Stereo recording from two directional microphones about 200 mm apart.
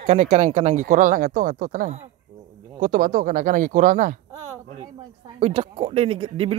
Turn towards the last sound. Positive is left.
turn(degrees=-30)  # may be behind; listen again after turning